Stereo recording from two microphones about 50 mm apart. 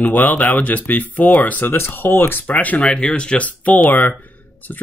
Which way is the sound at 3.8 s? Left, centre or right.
Left.